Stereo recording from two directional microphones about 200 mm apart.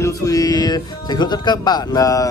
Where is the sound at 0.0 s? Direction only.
15° left (ahead or behind).